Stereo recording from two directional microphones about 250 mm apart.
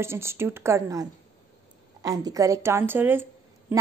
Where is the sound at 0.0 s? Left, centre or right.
Centre.